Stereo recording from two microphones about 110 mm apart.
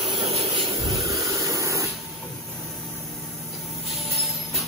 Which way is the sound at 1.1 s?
30° right (ahead or behind).